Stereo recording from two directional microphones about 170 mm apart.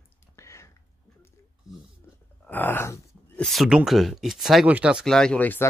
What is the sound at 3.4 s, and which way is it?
Speech, centre (ahead or behind).